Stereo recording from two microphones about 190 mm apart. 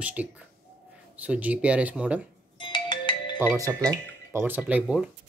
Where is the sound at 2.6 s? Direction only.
25° left (ahead or behind).